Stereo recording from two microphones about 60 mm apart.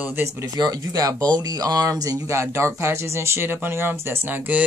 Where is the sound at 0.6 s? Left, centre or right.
Right.